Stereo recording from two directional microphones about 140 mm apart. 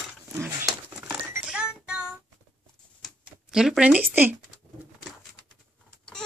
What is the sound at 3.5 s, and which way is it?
Speech, 5° right (ahead or behind).